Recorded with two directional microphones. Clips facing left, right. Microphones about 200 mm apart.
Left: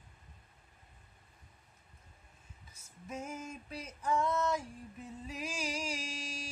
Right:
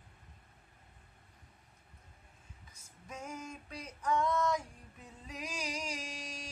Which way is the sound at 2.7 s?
5° left (ahead or behind).